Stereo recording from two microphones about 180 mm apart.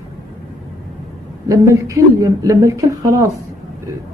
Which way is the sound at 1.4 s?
20° right (ahead or behind).